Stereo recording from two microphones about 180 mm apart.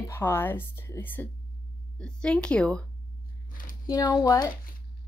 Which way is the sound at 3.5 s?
50° left (ahead or behind).